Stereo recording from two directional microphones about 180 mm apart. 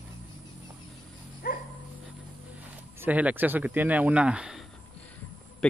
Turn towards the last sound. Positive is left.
turn(degrees=5)  # may be behind; listen again after turning